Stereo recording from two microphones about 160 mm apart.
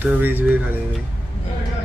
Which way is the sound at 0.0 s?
10° right (ahead or behind).